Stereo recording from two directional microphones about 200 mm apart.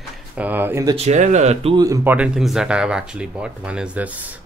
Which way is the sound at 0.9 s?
35° right (ahead or behind).